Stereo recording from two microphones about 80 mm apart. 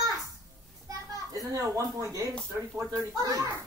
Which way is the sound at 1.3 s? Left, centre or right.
Right.